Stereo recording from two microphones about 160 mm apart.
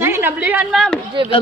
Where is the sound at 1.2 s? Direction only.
30° right (ahead or behind).